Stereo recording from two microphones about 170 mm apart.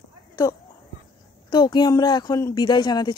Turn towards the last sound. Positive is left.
turn(degrees=25)  # may be behind; listen again after turning